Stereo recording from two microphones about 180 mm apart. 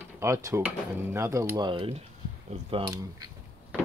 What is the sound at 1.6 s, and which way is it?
Speech, 25° right (ahead or behind).